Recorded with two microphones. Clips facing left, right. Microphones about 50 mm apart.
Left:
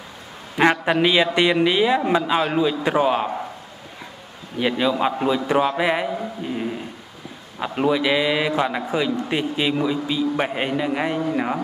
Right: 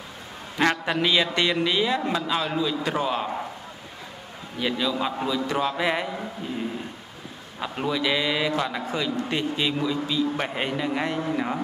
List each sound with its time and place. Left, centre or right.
0.6 s a man's voice: centre
4.6 s a man's voice: left